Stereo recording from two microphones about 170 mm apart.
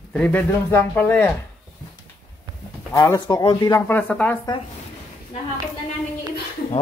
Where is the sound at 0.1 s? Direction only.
10° left (ahead or behind).